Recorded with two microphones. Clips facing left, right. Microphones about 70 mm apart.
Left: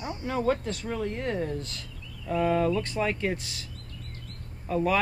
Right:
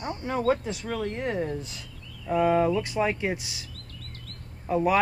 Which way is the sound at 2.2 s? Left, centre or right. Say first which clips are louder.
Right 3 dB; centre.